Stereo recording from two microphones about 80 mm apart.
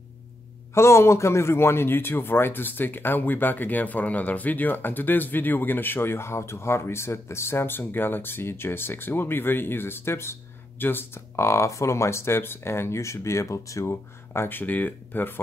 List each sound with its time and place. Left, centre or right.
0.7 s a man's voice: left